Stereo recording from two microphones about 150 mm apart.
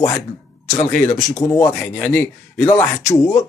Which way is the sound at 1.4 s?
20° left (ahead or behind).